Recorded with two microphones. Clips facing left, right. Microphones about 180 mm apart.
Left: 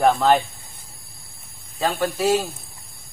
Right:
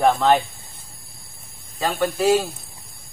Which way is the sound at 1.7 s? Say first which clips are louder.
Even; centre (ahead or behind).